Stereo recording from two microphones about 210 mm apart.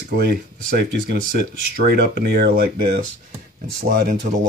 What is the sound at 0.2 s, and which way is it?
Speech, 50° right (ahead or behind).